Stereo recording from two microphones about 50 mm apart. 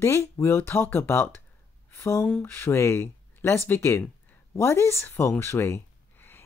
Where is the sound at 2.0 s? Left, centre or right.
Left.